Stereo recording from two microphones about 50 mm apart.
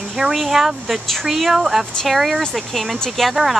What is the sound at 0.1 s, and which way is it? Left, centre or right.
Speech, centre.